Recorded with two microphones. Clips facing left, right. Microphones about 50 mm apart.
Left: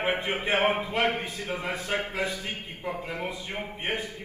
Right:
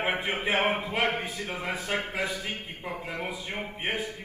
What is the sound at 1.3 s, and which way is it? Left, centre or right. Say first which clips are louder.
A man's voice: left 1 dB; right.